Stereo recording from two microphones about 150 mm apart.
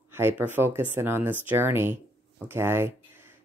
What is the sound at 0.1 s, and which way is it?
Speech, 15° right (ahead or behind).